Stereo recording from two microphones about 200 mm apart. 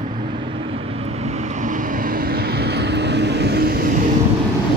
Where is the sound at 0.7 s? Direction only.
30° right (ahead or behind); by 4.0 s 45° right (ahead or behind).